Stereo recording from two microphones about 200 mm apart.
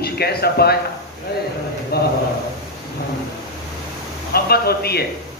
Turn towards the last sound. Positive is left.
turn(degrees=50)  # may be behind; listen again after turning